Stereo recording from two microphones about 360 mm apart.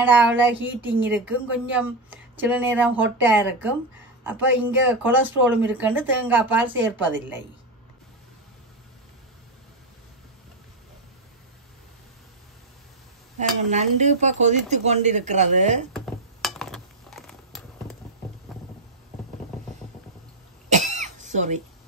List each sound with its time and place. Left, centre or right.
0.0 s a woman's voice: centre
13.4 s speech: centre
15.9 s a sound: centre
20.7 s cough: centre